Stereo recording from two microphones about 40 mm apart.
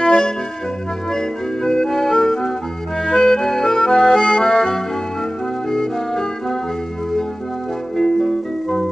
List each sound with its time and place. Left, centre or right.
0.0 s music: left
1.1 s music: centre